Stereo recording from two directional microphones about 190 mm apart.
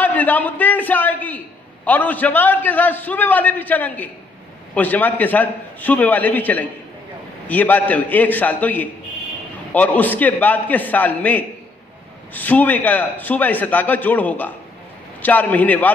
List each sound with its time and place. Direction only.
0.0 s a man's voice: 10° left (ahead or behind)